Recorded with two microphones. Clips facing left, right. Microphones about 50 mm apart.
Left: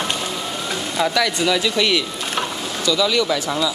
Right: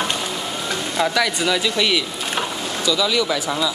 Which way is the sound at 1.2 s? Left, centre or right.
Right.